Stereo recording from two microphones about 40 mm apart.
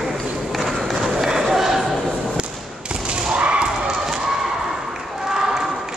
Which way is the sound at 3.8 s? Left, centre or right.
Centre.